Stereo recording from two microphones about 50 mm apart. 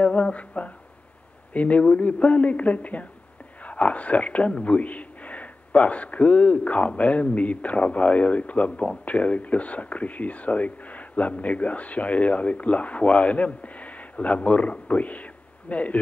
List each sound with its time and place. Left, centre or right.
0.0 s speech: left